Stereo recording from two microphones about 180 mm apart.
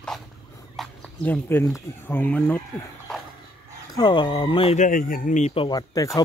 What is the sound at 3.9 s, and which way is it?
Speech, 25° left (ahead or behind).